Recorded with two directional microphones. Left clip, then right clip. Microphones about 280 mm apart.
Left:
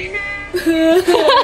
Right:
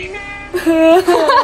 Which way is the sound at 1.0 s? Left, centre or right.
Left.